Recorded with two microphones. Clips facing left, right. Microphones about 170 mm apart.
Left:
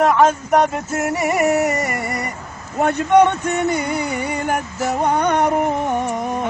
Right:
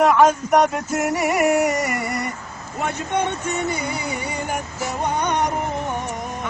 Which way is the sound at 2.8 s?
60° left (ahead or behind).